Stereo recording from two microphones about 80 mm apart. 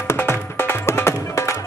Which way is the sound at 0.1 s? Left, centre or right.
Left.